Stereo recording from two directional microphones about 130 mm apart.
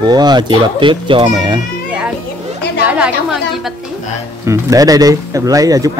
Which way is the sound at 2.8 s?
10° right (ahead or behind).